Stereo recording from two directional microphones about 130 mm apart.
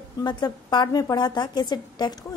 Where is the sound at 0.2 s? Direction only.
35° left (ahead or behind).